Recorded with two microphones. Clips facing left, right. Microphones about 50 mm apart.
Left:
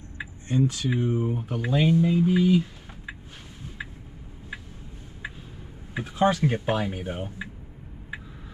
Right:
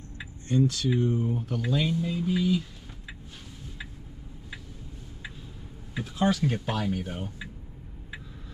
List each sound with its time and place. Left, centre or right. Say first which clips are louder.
0.2 s speech: even; centre
5.9 s speech: left 3 dB; left